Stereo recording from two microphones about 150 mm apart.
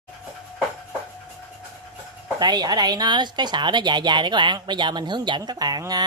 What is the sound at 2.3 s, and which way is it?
Speech, 25° right (ahead or behind).